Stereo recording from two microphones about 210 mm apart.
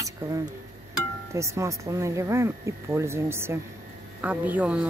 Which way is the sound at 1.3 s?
15° right (ahead or behind).